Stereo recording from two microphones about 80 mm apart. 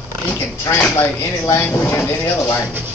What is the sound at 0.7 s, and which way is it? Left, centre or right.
Speech, left.